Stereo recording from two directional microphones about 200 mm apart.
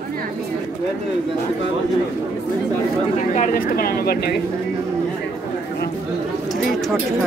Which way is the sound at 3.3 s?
45° left (ahead or behind).